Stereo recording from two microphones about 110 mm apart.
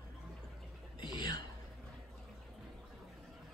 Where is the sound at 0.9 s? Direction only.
40° left (ahead or behind).